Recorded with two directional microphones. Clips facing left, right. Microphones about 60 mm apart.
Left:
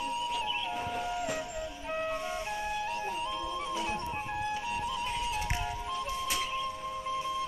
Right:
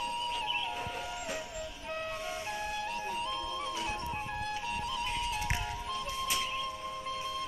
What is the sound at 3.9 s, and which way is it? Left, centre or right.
Music, centre.